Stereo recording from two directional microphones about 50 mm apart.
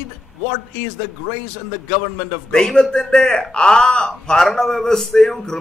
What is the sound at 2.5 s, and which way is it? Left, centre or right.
A man's voice, centre.